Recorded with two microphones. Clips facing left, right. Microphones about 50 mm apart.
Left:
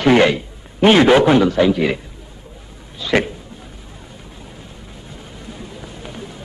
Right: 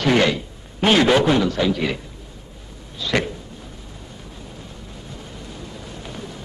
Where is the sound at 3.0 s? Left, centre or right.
Left.